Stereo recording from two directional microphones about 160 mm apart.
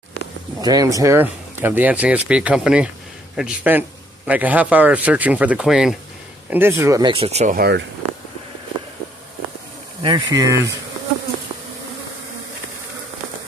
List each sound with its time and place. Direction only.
0.6 s speech: 25° right (ahead or behind); by 5.9 s 5° right (ahead or behind)
6.5 s speech: 15° right (ahead or behind)
7.2 s speech: 40° right (ahead or behind)
7.5 s speech: 75° right (ahead or behind)
10.0 s speech: 30° right (ahead or behind)